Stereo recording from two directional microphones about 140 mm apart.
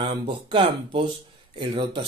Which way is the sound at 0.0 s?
35° right (ahead or behind).